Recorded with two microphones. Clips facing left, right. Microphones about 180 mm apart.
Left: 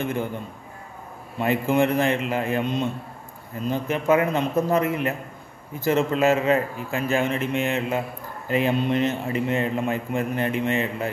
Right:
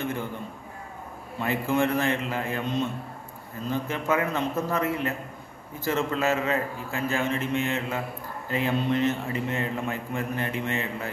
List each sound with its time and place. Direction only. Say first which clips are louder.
1.4 s a man's voice: left 4 dB; 15° left (ahead or behind)